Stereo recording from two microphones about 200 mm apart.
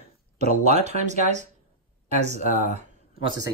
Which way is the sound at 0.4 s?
35° right (ahead or behind).